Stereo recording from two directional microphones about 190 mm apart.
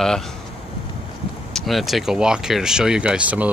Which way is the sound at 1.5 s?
Centre (ahead or behind).